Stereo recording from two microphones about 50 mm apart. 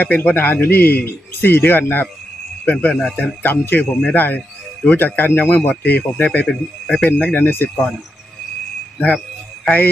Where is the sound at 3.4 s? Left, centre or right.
Left.